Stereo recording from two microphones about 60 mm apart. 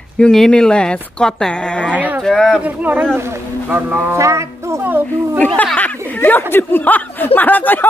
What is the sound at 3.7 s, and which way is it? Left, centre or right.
Speech, right.